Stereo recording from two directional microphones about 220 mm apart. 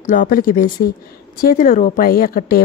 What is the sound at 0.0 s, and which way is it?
A woman's voice, 35° left (ahead or behind).